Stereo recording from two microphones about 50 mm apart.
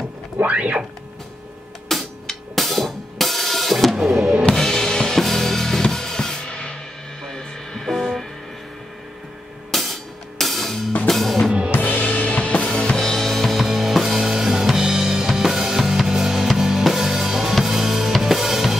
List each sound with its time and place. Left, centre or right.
0.5 s speech: right
1.9 s music: centre
4.6 s drum kit: centre
7.2 s music: centre
9.7 s music: centre
11.7 s music: left
12.6 s drum kit: centre
13.7 s music: centre